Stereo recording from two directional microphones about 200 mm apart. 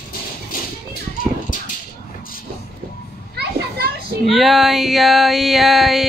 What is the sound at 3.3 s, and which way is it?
Children playing, 55° right (ahead or behind).